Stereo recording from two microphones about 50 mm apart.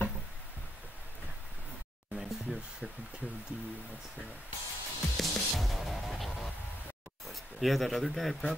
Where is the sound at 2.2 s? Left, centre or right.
Centre.